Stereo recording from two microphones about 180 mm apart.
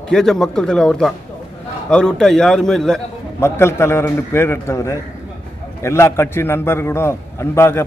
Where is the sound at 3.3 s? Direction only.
15° left (ahead or behind).